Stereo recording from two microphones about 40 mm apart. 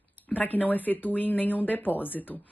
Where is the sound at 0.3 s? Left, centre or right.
Left.